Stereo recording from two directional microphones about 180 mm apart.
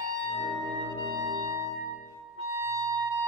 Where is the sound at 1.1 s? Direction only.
20° right (ahead or behind).